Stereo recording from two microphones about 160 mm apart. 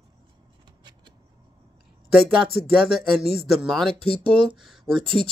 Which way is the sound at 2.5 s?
Centre (ahead or behind).